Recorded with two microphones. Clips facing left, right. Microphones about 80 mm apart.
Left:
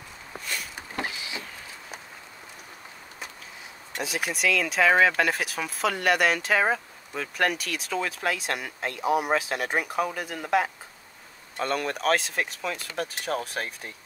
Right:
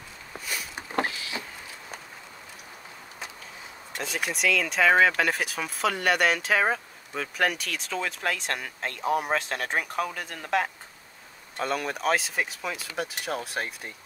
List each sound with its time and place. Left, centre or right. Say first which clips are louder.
4.0 s speech: left 1 dB; centre